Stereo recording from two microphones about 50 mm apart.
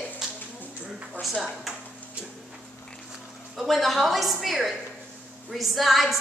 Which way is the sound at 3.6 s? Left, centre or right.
Centre.